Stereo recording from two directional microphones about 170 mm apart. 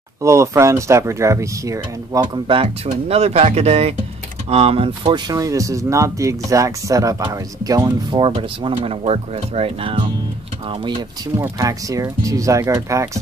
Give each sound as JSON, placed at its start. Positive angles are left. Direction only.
{"t": 0.2, "sound": "speech", "side_deg": -15}
{"t": 11.3, "sound": "speech", "side_deg": -15}